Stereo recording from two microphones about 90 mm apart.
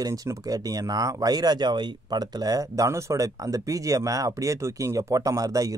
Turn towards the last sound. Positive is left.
turn(degrees=-40)  # may be behind; listen again after turning